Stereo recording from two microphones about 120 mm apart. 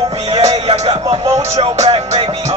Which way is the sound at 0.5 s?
60° right (ahead or behind).